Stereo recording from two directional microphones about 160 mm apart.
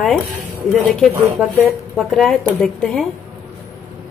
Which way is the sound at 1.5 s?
Centre (ahead or behind).